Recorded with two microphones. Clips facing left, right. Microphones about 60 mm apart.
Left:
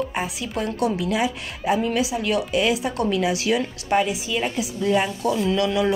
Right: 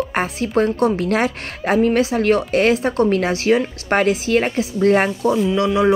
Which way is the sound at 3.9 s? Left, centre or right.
Right.